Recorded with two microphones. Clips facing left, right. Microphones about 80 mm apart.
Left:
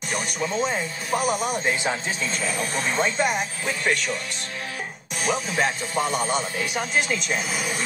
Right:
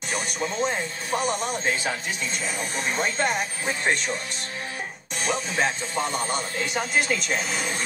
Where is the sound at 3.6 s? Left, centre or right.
Right.